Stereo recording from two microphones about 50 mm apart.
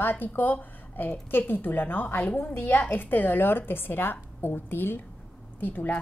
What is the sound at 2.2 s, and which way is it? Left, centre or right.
A woman's voice, left.